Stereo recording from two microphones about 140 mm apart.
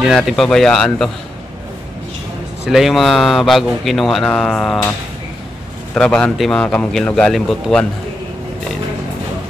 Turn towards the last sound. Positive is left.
turn(degrees=5)  # may be behind; listen again after turning